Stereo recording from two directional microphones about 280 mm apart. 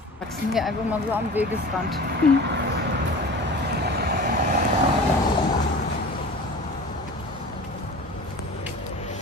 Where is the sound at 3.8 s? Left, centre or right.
Right.